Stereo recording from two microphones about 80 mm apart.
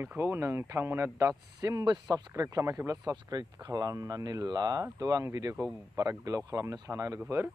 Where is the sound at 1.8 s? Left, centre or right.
Right.